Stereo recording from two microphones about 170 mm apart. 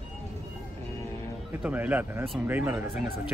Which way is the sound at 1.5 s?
10° right (ahead or behind).